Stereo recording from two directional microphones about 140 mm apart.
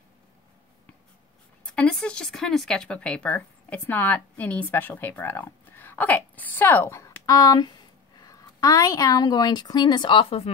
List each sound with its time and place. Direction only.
1.7 s a woman's voice: 5° left (ahead or behind); by 10.5 s 40° left (ahead or behind)